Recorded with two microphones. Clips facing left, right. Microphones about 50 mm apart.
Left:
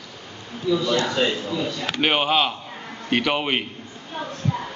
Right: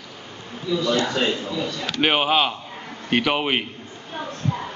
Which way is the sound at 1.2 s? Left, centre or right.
Centre.